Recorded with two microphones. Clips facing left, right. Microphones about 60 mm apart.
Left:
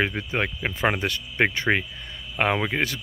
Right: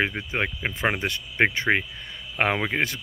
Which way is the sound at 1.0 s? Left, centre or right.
Right.